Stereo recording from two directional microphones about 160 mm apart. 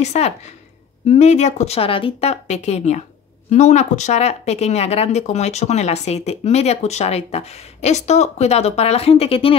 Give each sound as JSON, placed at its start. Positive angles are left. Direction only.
{"t": 0.0, "sound": "speech", "side_deg": 45}